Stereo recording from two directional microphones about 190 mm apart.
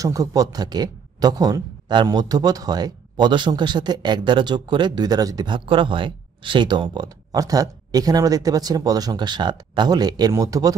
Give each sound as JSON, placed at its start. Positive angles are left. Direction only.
{"t": 0.0, "sound": "speech", "side_deg": -20}